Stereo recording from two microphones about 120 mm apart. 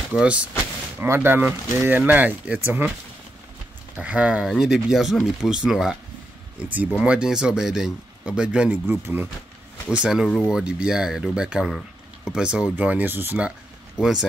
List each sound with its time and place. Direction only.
0.1 s speech: 10° right (ahead or behind)
0.9 s speech: 20° right (ahead or behind)
3.9 s speech: 10° right (ahead or behind)
7.0 s speech: 5° right (ahead or behind)
9.8 s speech: 5° right (ahead or behind)